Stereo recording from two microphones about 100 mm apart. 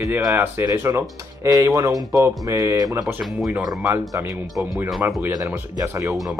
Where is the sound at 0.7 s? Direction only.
30° right (ahead or behind).